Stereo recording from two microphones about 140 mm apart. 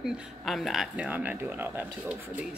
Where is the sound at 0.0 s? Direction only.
Centre (ahead or behind).